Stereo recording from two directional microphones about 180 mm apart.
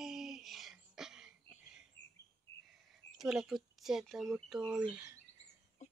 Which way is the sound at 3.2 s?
Centre (ahead or behind).